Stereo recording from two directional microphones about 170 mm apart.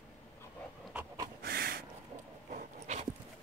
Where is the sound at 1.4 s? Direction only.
60° right (ahead or behind).